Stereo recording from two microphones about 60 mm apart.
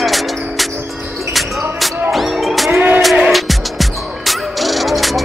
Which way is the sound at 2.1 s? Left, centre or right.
Centre.